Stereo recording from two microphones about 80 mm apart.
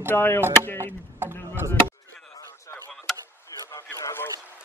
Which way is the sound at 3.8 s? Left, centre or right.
Left.